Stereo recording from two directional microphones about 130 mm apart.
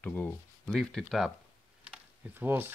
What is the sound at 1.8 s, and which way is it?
Computer keyboard, 10° right (ahead or behind).